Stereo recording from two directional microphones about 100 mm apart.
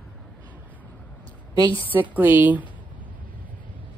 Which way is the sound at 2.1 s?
20° right (ahead or behind).